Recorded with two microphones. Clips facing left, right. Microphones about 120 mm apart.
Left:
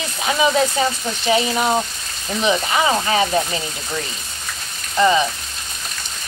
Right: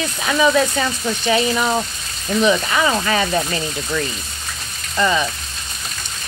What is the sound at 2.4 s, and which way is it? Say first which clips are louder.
Speech: right 1 dB; 20° left (ahead or behind).